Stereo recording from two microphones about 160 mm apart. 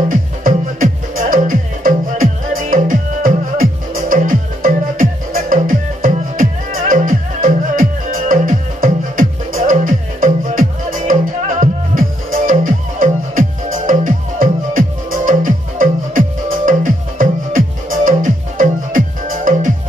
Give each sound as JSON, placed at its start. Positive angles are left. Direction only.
{"t": 0.1, "sound": "music", "side_deg": -60}